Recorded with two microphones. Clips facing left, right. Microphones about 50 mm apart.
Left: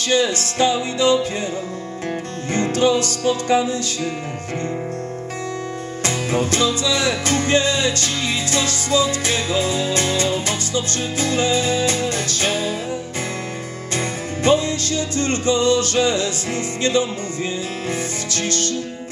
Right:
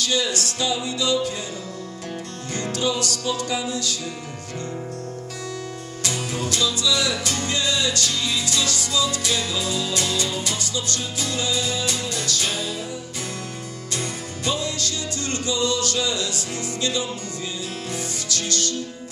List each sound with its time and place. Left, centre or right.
0.0 s music: left
2.5 s music: left
6.0 s music: left
13.9 s music: left
18.3 s music: left